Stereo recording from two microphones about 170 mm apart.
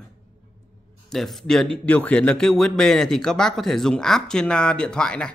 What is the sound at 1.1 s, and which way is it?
A man's voice, centre (ahead or behind).